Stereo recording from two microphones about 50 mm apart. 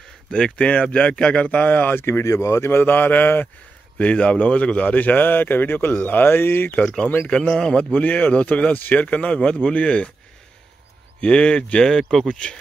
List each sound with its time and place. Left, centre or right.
0.3 s speech: left
1.5 s speech: left
2.0 s speech: left
2.7 s speech: left
4.0 s speech: left
7.2 s speech: centre
11.1 s speech: centre
11.9 s speech: centre
12.3 s speech: centre